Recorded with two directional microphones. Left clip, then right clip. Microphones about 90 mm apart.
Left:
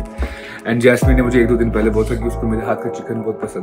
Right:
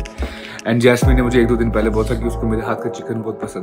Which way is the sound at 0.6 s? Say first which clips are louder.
Even; 35° right (ahead or behind).